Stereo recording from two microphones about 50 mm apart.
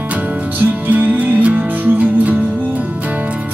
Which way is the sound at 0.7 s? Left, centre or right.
Right.